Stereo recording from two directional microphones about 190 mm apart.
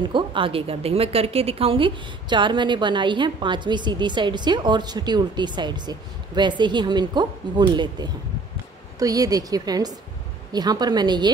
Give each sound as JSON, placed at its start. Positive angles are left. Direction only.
{"t": 0.0, "sound": "a woman's voice", "side_deg": -25}